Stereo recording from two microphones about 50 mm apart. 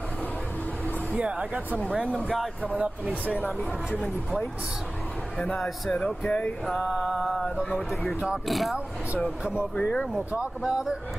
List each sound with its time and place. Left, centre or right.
1.1 s speech: centre
2.1 s mantra: centre
2.8 s speech: right
5.4 s speech: centre
6.8 s mantra: centre
9.8 s speech: left
10.7 s speech: centre